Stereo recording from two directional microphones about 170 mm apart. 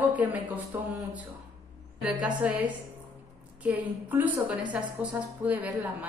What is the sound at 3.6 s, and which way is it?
A woman's voice, 10° right (ahead or behind).